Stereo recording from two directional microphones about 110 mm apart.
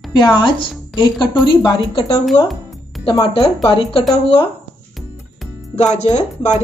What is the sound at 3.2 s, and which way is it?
Speech, 55° left (ahead or behind).